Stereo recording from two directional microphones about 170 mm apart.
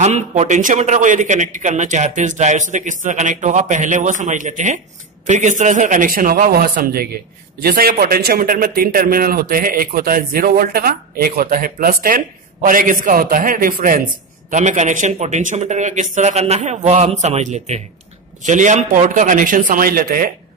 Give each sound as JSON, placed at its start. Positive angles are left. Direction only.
{"t": 0.0, "sound": "a man's voice", "side_deg": -40}